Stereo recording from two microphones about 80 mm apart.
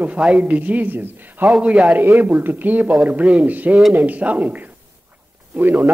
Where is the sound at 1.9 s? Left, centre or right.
Right.